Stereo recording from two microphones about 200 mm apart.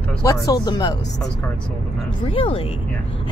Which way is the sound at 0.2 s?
15° left (ahead or behind).